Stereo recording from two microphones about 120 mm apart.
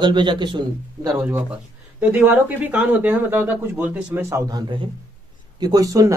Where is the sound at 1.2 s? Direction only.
20° right (ahead or behind).